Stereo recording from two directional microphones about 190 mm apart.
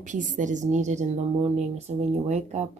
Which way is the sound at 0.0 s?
40° right (ahead or behind).